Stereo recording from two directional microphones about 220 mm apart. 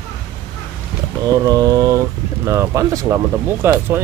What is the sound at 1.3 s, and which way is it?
Speech, 15° right (ahead or behind).